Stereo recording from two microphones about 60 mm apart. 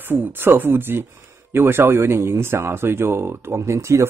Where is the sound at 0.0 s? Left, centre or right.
Right.